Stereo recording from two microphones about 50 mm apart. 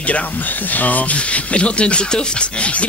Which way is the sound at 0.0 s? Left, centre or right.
Left.